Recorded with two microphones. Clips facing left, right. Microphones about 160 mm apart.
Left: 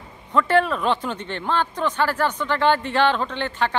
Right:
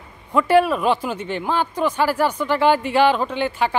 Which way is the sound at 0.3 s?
10° right (ahead or behind).